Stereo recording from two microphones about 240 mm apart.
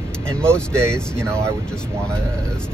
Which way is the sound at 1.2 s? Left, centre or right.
Centre.